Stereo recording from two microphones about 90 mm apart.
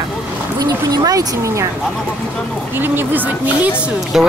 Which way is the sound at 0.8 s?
45° right (ahead or behind).